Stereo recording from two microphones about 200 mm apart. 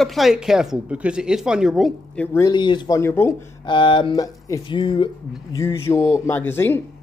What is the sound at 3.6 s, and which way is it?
Speech, 25° left (ahead or behind).